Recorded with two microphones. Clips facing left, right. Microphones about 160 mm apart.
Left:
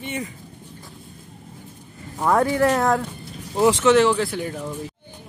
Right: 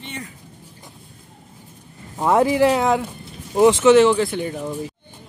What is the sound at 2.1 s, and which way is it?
Speech, 20° right (ahead or behind).